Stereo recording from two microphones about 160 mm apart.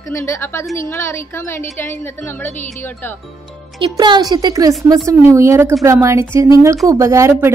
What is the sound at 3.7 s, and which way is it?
Speech, 30° right (ahead or behind).